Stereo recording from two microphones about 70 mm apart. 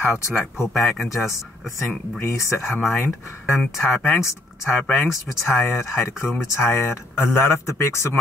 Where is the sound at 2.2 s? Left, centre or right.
Left.